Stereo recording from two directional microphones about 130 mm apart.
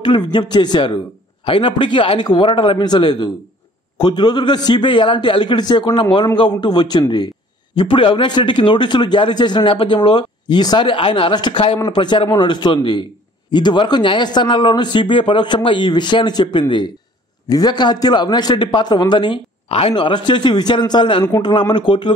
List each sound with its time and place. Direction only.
0.0 s a man's voice: 40° left (ahead or behind)